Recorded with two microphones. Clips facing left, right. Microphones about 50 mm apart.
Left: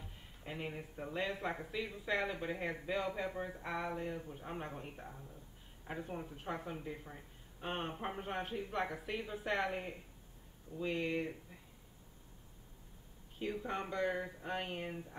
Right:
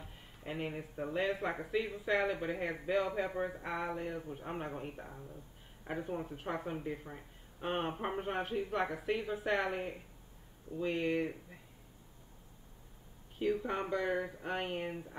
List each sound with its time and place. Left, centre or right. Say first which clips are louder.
0.4 s speech: right 4 dB; centre
3.5 s speech: right 2 dB; centre
10.8 s speech: right 3 dB; centre
13.6 s speech: right 3 dB; centre